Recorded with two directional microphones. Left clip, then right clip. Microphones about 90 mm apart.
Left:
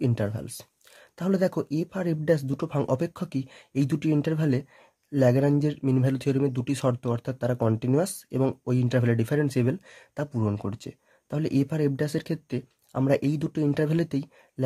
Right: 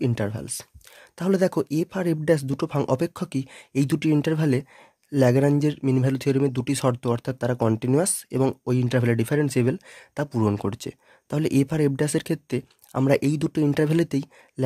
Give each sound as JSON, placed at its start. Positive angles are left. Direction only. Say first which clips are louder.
{"t": 0.0, "sound": "speech", "louder": "right 2 dB", "side_deg": -30}
{"t": 10.3, "sound": "speech", "louder": "right 6 dB", "side_deg": -60}